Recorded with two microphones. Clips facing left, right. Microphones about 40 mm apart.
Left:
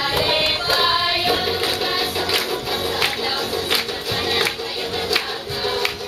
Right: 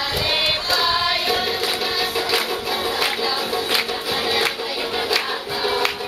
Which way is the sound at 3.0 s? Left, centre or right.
Centre.